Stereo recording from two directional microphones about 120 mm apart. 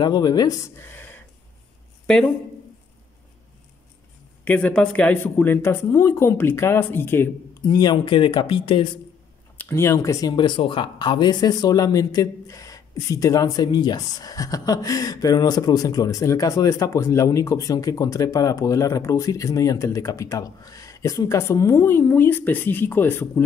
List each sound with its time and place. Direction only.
0.0 s speech: 35° left (ahead or behind); by 1.2 s 15° left (ahead or behind)
4.5 s speech: 10° left (ahead or behind)
7.6 s speech: 35° left (ahead or behind)
9.6 s speech: 20° left (ahead or behind)